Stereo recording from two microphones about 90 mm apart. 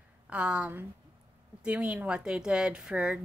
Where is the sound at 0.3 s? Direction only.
15° right (ahead or behind).